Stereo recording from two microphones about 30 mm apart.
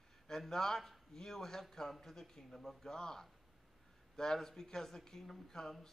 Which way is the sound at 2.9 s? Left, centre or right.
Left.